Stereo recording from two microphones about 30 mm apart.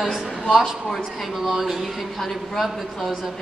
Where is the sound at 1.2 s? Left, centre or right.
Centre.